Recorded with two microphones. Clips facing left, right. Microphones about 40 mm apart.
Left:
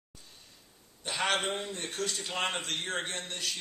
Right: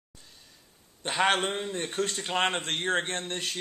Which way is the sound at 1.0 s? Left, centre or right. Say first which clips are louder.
Right 5 dB; right.